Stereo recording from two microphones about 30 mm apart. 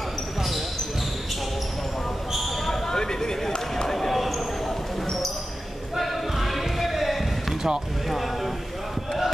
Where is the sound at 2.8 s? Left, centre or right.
Left.